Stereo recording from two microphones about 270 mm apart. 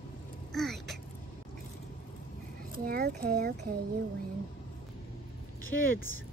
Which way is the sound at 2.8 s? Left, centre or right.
Right.